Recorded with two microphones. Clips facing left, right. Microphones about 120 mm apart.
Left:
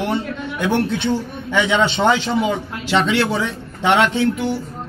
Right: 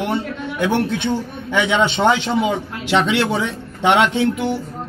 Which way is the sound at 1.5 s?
15° right (ahead or behind).